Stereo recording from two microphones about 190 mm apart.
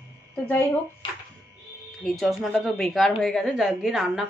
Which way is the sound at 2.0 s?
Centre (ahead or behind).